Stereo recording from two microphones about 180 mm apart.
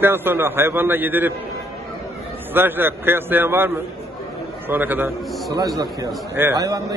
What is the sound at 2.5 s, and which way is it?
A man's voice, 10° right (ahead or behind).